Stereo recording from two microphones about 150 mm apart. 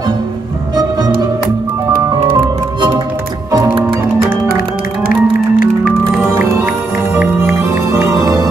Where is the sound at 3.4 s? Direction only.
20° right (ahead or behind).